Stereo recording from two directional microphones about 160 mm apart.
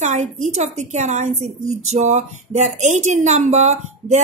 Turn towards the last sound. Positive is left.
turn(degrees=-45)  # may be behind; listen again after turning